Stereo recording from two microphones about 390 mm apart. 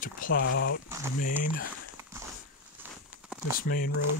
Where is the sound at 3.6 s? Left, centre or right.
Left.